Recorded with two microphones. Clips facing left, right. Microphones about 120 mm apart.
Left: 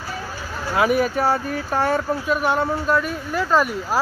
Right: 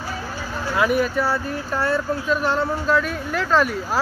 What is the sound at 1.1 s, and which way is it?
Speech, 45° left (ahead or behind).